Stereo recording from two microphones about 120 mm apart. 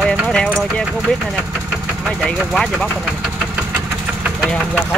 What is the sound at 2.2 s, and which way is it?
Speech, 5° left (ahead or behind).